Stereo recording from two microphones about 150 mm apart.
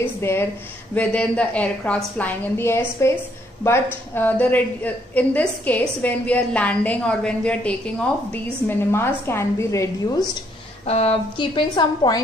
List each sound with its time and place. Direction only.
0.0 s a woman's voice: 15° left (ahead or behind)
10.9 s a woman's voice: 40° left (ahead or behind)